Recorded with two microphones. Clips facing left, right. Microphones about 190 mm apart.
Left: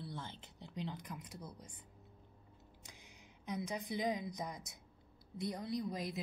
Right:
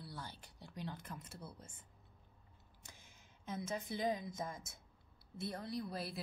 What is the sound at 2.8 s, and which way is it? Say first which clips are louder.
A woman's voice: left 1 dB; 15° left (ahead or behind).